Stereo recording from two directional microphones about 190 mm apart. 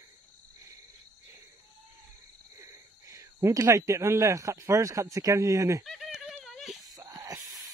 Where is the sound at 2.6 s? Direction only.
15° right (ahead or behind).